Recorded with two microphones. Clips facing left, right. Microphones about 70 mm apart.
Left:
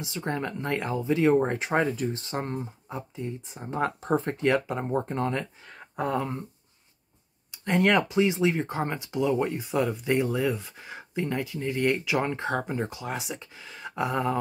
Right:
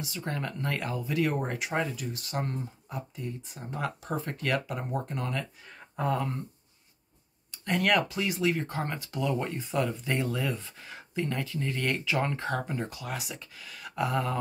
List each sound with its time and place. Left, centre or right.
0.0 s speech: left
5.9 s speech: left
7.5 s speech: left